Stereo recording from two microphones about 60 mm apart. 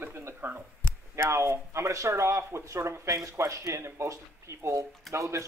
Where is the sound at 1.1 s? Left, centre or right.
Right.